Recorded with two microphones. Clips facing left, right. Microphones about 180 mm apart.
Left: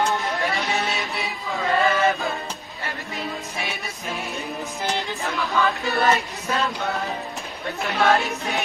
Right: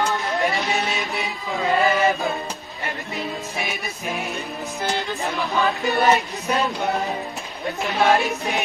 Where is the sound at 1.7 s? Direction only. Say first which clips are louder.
Right 1 dB; 20° right (ahead or behind).